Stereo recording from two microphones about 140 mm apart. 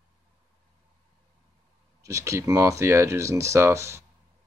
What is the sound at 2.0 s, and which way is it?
Speech, 20° right (ahead or behind).